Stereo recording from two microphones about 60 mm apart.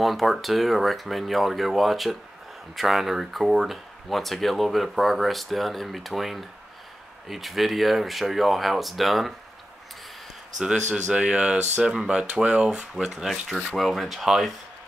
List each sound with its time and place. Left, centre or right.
0.0 s speech: centre
10.6 s speech: centre
13.2 s speech: centre